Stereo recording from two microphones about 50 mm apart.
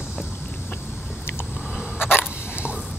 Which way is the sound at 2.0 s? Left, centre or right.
Left.